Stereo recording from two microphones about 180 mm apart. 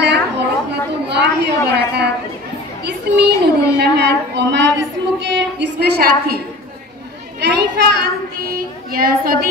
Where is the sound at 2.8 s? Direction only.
70° right (ahead or behind).